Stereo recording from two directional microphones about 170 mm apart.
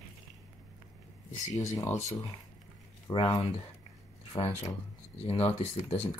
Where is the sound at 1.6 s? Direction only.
20° left (ahead or behind).